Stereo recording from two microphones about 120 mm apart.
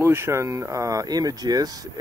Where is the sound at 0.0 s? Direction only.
20° right (ahead or behind).